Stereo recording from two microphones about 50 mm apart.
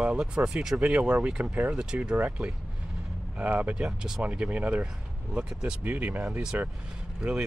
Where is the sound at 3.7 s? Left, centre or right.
Centre.